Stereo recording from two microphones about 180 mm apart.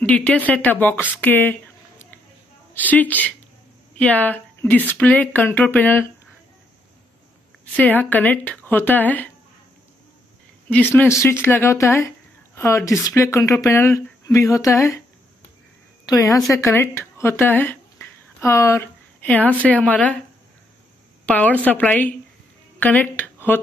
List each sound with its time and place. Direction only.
0.0 s speech: 10° left (ahead or behind)
2.7 s speech: 10° left (ahead or behind)
7.7 s speech: 10° left (ahead or behind)
10.7 s speech: 10° left (ahead or behind)
16.1 s a woman's voice: 20° left (ahead or behind)
21.3 s speech: 10° left (ahead or behind)